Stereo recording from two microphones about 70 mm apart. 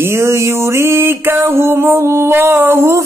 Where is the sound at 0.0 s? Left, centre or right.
Right.